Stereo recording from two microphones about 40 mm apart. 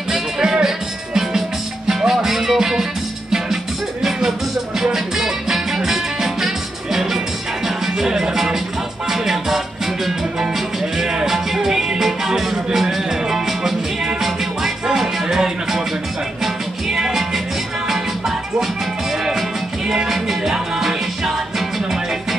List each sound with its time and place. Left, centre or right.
0.1 s music: centre
11.0 s music: centre
16.9 s music: centre
20.1 s music: centre